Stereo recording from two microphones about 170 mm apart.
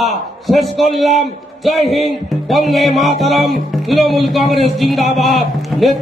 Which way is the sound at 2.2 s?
Centre (ahead or behind).